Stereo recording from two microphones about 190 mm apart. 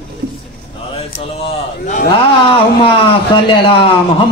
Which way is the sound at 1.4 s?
40° left (ahead or behind).